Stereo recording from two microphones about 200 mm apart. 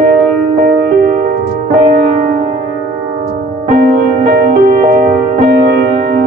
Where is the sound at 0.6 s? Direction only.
45° right (ahead or behind).